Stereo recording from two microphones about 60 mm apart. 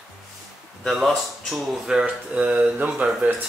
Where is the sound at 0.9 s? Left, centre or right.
Centre.